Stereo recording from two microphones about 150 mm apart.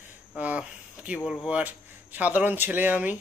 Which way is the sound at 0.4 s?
10° right (ahead or behind).